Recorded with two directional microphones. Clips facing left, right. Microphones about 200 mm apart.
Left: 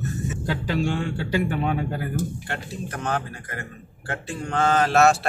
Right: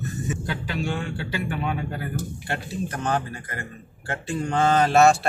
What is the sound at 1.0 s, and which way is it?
Speech, 40° left (ahead or behind).